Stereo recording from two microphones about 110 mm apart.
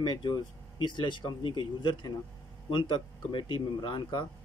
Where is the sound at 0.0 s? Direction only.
40° left (ahead or behind).